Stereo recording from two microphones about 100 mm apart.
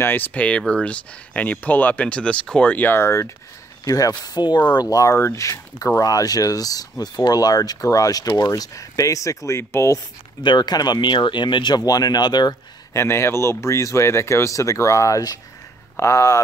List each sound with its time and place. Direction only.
0.0 s speech: 20° left (ahead or behind)
3.8 s speech: 35° left (ahead or behind)
10.4 s speech: 45° left (ahead or behind)
12.9 s speech: 25° left (ahead or behind)